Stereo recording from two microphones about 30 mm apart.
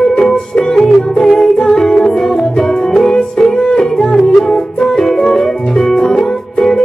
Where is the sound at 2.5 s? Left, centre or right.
Left.